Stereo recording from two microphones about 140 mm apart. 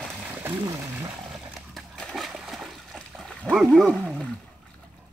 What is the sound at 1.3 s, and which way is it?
Splash, centre (ahead or behind).